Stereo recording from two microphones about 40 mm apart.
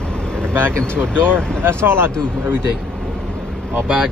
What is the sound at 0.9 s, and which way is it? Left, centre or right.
Speech, right.